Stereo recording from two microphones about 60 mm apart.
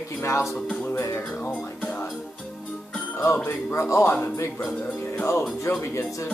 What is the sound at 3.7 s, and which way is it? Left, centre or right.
Speech, left.